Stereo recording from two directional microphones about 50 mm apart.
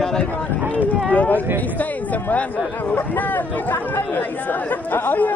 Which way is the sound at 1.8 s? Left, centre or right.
Left.